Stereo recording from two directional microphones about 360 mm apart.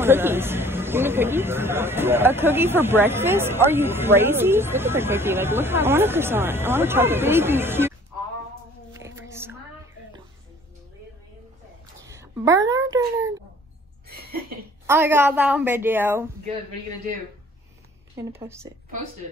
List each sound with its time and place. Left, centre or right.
0.0 s speech: centre
8.9 s a sound: centre
12.0 s speech: centre
14.0 s a sound: right
14.9 s a woman's voice: centre
18.3 s speech: centre